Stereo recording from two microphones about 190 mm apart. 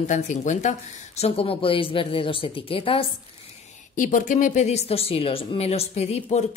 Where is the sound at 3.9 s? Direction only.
45° left (ahead or behind).